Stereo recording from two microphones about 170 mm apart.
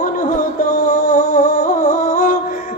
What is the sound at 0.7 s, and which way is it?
Music, 55° left (ahead or behind).